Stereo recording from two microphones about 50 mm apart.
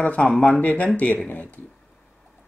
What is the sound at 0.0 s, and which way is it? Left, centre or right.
Speech, left.